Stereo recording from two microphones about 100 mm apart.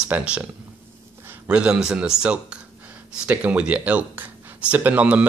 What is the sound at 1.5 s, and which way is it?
Speech, 10° right (ahead or behind).